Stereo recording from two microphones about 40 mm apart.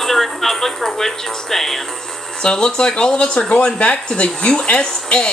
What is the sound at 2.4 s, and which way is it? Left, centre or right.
Speech, left.